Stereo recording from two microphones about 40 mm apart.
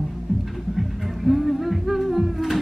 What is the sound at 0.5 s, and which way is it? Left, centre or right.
Music, centre.